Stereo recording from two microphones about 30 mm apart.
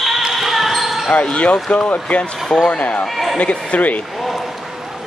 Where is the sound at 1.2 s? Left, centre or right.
Left.